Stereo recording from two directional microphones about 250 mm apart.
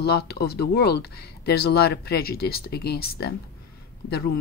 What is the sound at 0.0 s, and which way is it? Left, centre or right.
Speech, left.